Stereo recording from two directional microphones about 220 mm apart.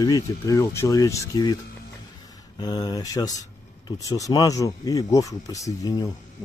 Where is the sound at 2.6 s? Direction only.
20° left (ahead or behind).